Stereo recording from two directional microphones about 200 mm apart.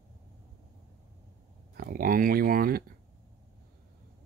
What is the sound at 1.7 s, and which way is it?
Speech, 45° right (ahead or behind).